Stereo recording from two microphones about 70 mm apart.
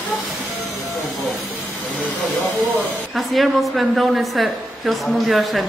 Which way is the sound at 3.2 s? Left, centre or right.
Centre.